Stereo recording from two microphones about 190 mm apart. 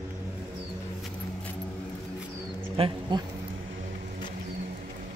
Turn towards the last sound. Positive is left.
turn(degrees=-25)  # may be behind; listen again after turning